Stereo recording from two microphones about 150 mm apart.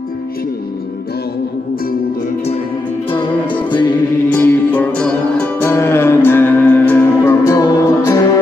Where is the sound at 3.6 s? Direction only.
30° left (ahead or behind).